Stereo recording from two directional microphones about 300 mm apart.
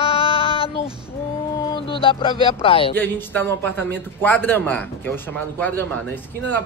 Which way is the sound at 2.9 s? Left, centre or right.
Centre.